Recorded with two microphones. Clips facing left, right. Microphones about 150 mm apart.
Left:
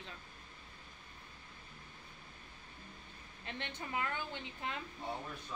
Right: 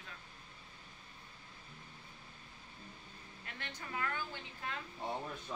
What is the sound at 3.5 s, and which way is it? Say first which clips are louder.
A woman's voice: left 4 dB; 25° left (ahead or behind).